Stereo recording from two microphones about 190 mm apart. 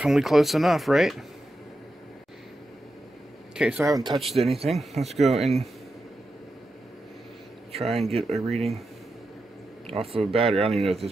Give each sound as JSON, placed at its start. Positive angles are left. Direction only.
{"t": 0.0, "sound": "speech", "side_deg": 0}
{"t": 3.5, "sound": "speech", "side_deg": -5}
{"t": 3.8, "sound": "speech", "side_deg": -20}
{"t": 4.1, "sound": "speech", "side_deg": 0}
{"t": 7.7, "sound": "speech", "side_deg": -30}
{"t": 9.8, "sound": "speech", "side_deg": -30}
{"t": 10.7, "sound": "speech", "side_deg": 0}